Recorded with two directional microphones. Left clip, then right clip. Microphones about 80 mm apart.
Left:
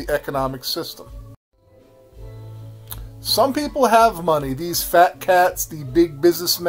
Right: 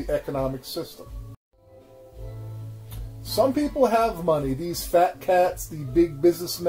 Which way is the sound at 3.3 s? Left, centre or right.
Left.